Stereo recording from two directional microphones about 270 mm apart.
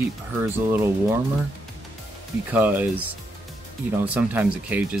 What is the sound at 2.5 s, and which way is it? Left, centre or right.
Speech, centre.